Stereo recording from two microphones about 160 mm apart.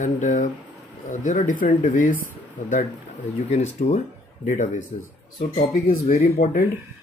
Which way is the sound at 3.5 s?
40° left (ahead or behind).